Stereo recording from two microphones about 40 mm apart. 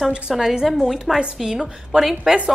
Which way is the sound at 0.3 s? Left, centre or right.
Centre.